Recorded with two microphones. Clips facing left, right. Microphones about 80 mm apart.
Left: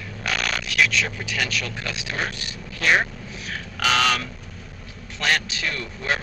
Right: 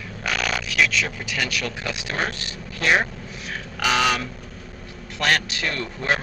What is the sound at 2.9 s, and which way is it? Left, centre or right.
Speech, centre.